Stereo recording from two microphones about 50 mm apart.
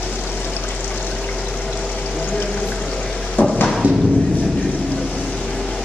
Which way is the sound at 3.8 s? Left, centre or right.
Right.